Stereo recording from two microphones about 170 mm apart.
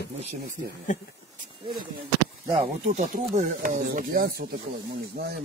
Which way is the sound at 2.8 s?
45° right (ahead or behind).